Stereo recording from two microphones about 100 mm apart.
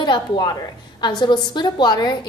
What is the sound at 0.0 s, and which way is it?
A woman's voice, 50° left (ahead or behind).